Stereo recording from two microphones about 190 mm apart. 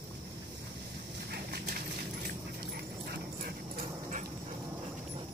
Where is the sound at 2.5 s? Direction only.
55° right (ahead or behind).